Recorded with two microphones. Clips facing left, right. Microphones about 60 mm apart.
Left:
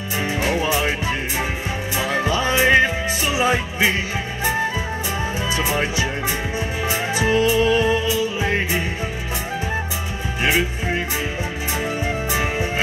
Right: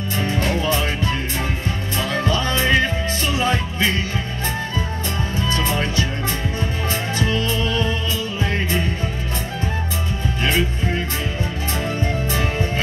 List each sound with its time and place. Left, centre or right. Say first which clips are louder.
0.2 s music: left 1 dB; centre
2.0 s music: left 1 dB; centre
5.6 s music: left 2 dB; centre
10.4 s music: left 1 dB; centre
12.3 s music: even; centre